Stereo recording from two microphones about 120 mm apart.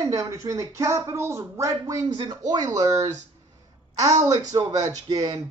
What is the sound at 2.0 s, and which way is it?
Speech, 40° right (ahead or behind).